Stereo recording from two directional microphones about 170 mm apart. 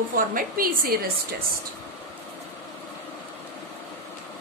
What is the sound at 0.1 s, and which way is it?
Speech, 55° right (ahead or behind).